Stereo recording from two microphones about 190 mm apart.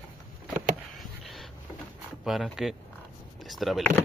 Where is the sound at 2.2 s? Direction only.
Centre (ahead or behind).